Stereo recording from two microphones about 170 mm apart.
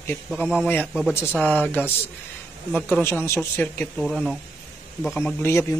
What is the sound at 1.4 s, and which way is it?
Speech, 10° left (ahead or behind).